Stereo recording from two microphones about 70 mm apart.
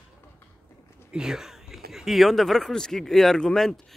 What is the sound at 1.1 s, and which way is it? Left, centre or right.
Speech, centre.